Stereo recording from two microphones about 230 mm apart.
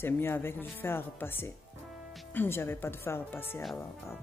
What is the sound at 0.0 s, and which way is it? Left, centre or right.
Speech, centre.